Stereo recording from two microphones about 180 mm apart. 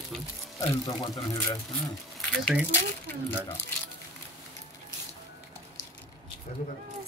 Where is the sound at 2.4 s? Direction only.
5° right (ahead or behind).